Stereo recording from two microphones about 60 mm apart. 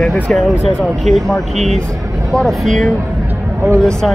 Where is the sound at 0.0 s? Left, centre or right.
Centre.